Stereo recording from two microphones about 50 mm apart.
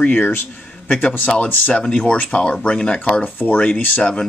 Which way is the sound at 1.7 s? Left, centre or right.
Left.